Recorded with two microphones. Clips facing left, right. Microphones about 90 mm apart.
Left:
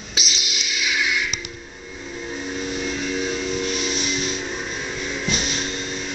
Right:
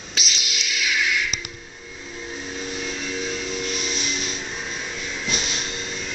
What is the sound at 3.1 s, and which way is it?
Steam whistle, 15° left (ahead or behind).